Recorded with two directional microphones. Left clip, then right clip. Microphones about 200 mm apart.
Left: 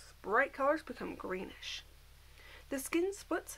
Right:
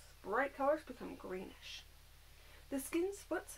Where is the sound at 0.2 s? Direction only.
15° left (ahead or behind).